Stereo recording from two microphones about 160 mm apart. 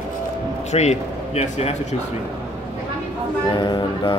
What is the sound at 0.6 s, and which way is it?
Speech, 45° left (ahead or behind).